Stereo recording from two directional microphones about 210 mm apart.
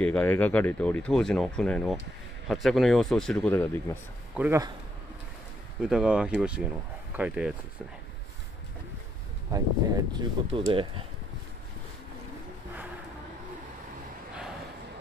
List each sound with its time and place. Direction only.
0.0 s speech: 5° left (ahead or behind)
4.4 s speech: 10° right (ahead or behind)
5.8 s speech: 5° right (ahead or behind)
9.5 s speech: 20° right (ahead or behind)